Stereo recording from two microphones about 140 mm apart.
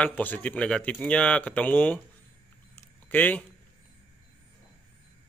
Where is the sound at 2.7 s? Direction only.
15° left (ahead or behind).